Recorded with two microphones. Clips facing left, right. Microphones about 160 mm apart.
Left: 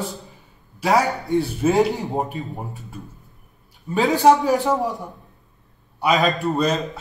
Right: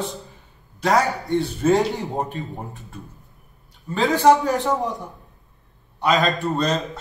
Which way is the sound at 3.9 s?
15° left (ahead or behind).